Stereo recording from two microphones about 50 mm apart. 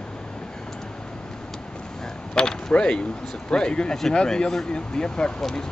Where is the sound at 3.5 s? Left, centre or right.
Centre.